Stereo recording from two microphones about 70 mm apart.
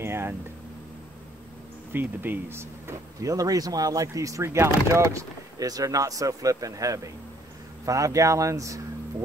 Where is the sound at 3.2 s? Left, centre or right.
Right.